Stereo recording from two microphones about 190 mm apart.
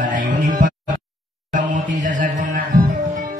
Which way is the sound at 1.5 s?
45° right (ahead or behind).